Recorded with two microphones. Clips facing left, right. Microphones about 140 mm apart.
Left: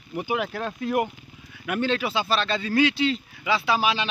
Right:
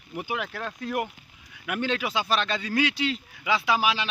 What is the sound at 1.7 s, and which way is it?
Speech, 10° right (ahead or behind).